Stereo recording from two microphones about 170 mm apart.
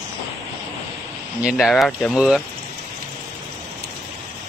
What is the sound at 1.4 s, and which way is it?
Speech, centre (ahead or behind).